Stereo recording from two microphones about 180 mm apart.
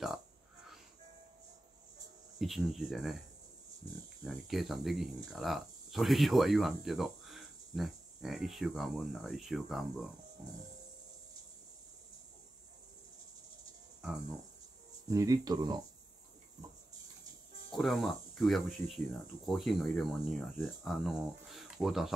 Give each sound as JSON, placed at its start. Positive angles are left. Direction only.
{"t": 2.3, "sound": "speech", "side_deg": 0}
{"t": 4.2, "sound": "speech", "side_deg": 0}
{"t": 15.0, "sound": "speech", "side_deg": -20}
{"t": 17.6, "sound": "speech", "side_deg": 0}